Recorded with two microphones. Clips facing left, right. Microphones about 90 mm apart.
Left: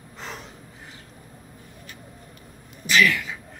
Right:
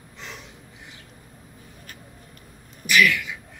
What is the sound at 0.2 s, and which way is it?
Snort, 40° left (ahead or behind).